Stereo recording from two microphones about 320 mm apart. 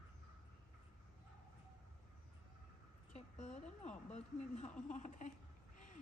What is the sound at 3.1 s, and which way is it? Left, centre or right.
A woman's voice, left.